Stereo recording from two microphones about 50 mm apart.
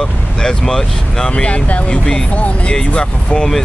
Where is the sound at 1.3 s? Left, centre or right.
Left.